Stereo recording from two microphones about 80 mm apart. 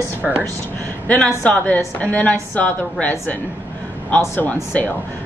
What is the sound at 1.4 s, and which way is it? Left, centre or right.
A woman's voice, centre.